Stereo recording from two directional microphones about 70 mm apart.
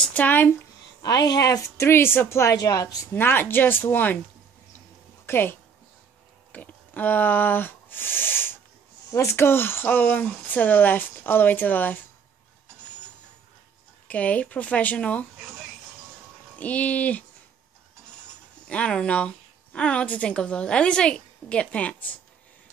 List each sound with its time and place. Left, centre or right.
0.1 s a woman's voice: left
1.0 s speech: left
1.8 s a woman's voice: left
2.6 s a woman's voice: left
3.1 s a woman's voice: left
5.2 s a woman's voice: left
14.0 s a woman's voice: left
16.5 s a woman's voice: left
18.7 s a woman's voice: centre